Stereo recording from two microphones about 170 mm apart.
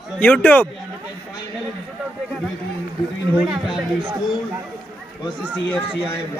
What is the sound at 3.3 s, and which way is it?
Speech, 5° right (ahead or behind).